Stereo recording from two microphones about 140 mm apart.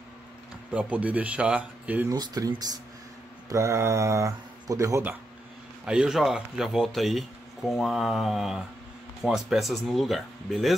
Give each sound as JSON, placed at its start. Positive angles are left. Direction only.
{"t": 0.7, "sound": "speech", "side_deg": -10}
{"t": 2.0, "sound": "speech", "side_deg": -25}
{"t": 5.9, "sound": "speech", "side_deg": -5}